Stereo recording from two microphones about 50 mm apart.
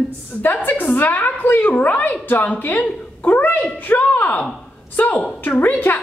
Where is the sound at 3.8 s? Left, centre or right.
Left.